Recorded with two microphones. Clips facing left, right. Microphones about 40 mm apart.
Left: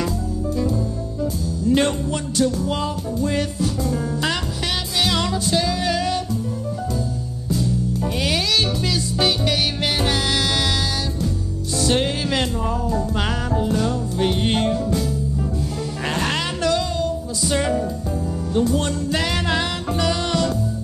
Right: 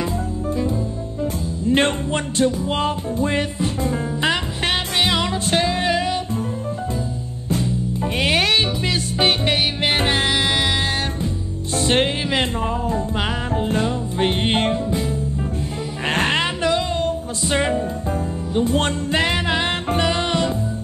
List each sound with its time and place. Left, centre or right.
1.2 s music: right
5.5 s music: right
8.2 s music: right
11.7 s music: right
16.3 s music: right
19.6 s music: right